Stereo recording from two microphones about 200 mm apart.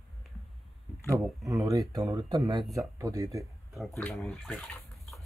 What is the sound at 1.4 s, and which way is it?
Speech, 15° right (ahead or behind).